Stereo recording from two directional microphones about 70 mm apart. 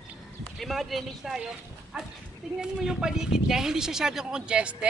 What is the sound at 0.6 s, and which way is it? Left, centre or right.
A woman's voice, centre.